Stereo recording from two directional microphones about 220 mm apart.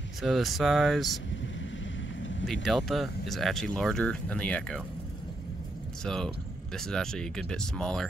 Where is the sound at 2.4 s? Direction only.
Centre (ahead or behind).